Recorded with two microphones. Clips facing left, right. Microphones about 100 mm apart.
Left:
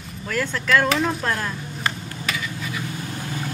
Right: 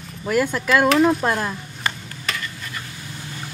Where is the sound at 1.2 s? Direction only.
15° right (ahead or behind).